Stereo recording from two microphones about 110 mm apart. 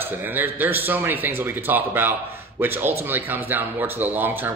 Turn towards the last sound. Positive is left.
turn(degrees=-20)  # may be behind; listen again after turning